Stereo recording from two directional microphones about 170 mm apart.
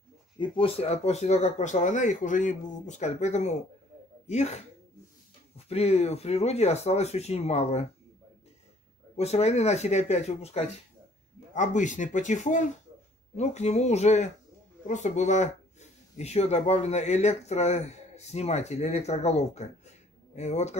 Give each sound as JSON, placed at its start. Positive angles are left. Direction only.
{"t": 0.4, "sound": "speech", "side_deg": 35}
{"t": 5.7, "sound": "speech", "side_deg": 40}
{"t": 9.1, "sound": "speech", "side_deg": 40}